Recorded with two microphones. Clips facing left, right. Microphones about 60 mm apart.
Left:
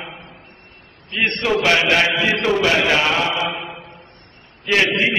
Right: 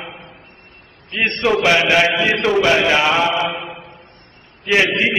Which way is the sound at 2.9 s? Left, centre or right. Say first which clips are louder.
Right 3 dB; centre.